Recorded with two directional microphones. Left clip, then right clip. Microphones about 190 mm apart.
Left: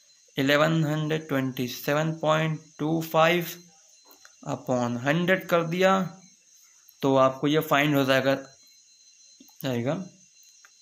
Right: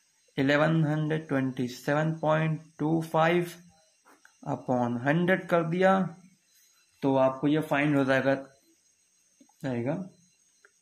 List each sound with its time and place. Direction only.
0.3 s speech: 10° left (ahead or behind)
7.0 s speech: 30° left (ahead or behind)
9.6 s speech: 25° left (ahead or behind)